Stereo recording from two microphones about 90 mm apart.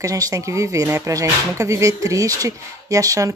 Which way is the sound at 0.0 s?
40° right (ahead or behind).